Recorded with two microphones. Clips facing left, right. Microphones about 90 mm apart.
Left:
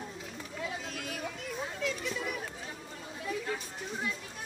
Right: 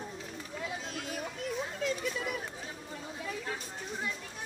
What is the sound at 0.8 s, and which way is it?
Chatter, 25° right (ahead or behind).